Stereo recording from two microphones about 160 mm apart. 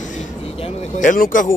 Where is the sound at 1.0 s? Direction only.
55° left (ahead or behind).